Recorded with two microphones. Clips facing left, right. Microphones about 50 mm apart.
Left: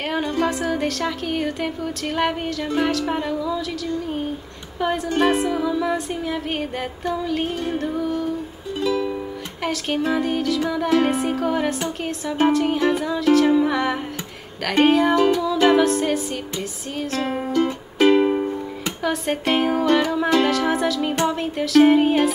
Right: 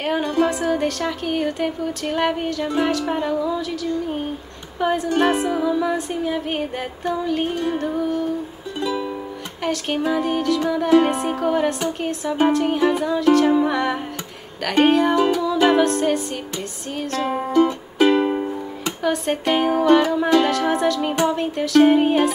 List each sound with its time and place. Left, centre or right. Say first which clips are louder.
0.0 s music: right 2 dB; centre
3.3 s a sound: right 2 dB; centre
4.7 s music: right 2 dB; centre
17.3 s music: right 5 dB; centre
17.9 s music: left 2 dB; centre